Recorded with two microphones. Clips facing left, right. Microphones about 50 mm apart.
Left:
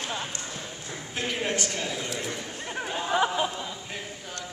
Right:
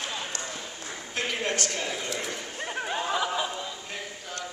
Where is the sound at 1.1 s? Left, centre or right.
Centre.